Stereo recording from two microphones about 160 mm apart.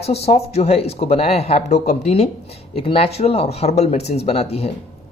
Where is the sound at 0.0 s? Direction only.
40° left (ahead or behind).